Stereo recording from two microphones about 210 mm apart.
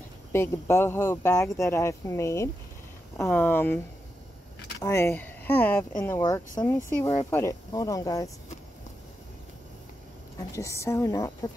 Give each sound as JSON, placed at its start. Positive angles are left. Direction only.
{"t": 0.3, "sound": "speech", "side_deg": 10}
{"t": 4.8, "sound": "speech", "side_deg": 15}
{"t": 10.5, "sound": "speech", "side_deg": 15}